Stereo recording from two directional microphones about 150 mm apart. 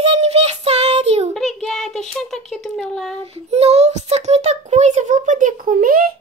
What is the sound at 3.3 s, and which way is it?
A child's voice, 45° right (ahead or behind).